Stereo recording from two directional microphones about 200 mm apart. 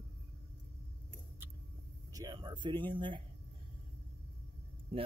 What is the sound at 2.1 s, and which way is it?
Speech, 20° right (ahead or behind).